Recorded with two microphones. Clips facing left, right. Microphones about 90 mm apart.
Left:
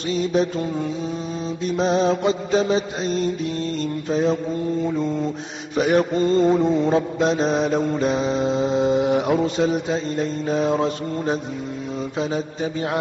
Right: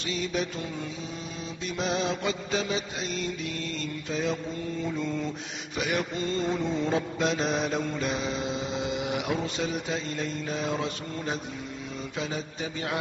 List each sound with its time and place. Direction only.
0.1 s mantra: 35° left (ahead or behind)
1.7 s mantra: 35° left (ahead or behind)
5.8 s mantra: 40° left (ahead or behind)